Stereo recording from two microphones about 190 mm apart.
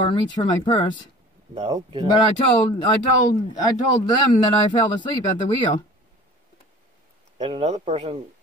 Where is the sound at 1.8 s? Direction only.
30° right (ahead or behind).